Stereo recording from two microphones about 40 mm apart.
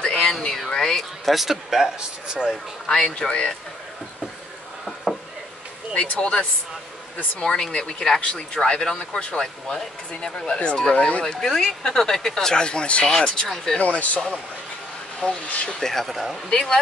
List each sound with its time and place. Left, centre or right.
0.0 s a sound: centre
1.2 s speech: centre
2.0 s a man's voice: centre
2.5 s speech: centre
3.3 s speech: left
5.9 s speech: left
7.3 s speech: centre
10.2 s speech: left
11.4 s speech: centre
13.7 s speech: left
15.2 s speech: left
15.8 s speech: centre
16.4 s speech: centre